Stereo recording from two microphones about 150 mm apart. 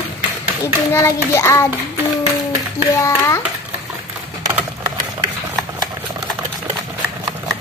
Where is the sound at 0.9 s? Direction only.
20° left (ahead or behind).